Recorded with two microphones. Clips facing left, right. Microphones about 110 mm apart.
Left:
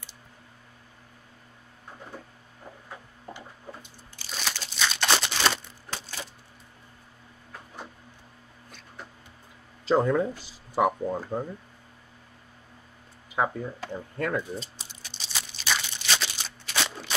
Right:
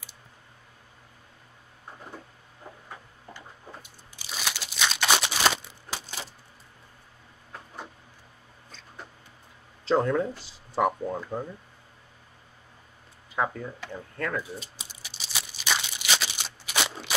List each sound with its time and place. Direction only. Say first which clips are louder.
4.2 s crunch: even; 10° right (ahead or behind)
9.8 s speech: left 1 dB; 5° left (ahead or behind)
13.4 s speech: left 2 dB; 15° left (ahead or behind)
14.4 s tearing: left 3 dB; 5° right (ahead or behind)